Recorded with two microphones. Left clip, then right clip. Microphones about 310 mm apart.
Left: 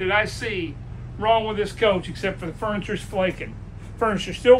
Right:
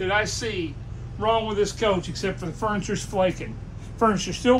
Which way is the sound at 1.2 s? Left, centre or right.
Centre.